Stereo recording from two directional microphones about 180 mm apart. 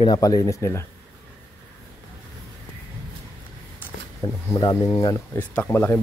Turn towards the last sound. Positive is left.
turn(degrees=10)  # may be behind; listen again after turning